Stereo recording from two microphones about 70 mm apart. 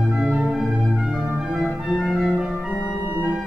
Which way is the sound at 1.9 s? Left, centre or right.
Centre.